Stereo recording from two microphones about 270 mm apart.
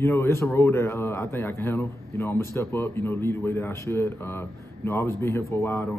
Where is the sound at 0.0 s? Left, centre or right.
Centre.